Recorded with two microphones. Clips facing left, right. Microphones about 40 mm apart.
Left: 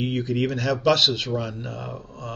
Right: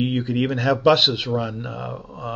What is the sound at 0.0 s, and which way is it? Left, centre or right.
Speech, right.